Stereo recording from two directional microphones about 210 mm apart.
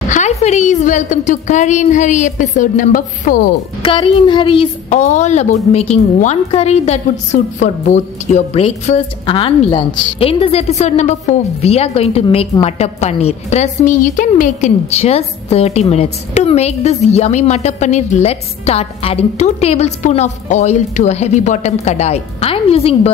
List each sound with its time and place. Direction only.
0.1 s a woman's voice: 35° left (ahead or behind)
3.8 s a woman's voice: 25° left (ahead or behind)